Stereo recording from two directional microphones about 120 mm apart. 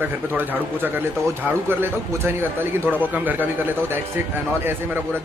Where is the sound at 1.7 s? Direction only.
20° right (ahead or behind).